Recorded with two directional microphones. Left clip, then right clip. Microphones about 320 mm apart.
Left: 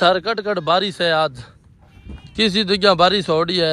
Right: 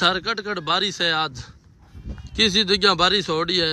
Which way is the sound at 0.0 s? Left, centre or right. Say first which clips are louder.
Left 5 dB; centre.